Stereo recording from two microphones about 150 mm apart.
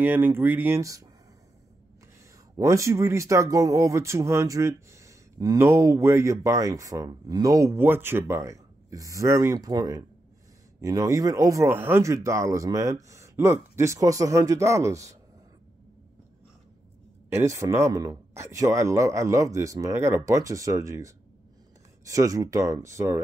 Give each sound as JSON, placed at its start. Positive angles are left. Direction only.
{"t": 0.0, "sound": "speech", "side_deg": -15}
{"t": 2.5, "sound": "speech", "side_deg": -20}
{"t": 17.5, "sound": "speech", "side_deg": -20}